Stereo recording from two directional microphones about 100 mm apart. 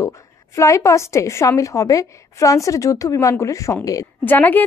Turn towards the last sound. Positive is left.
turn(degrees=20)  # may be behind; listen again after turning